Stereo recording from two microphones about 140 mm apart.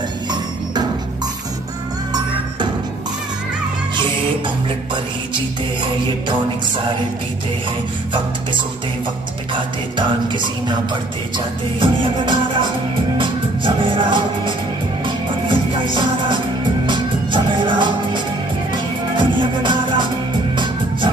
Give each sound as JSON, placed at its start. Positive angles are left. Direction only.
{"t": 9.5, "sound": "music", "side_deg": -35}